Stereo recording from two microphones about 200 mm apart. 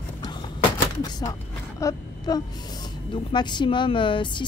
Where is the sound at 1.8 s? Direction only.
15° left (ahead or behind).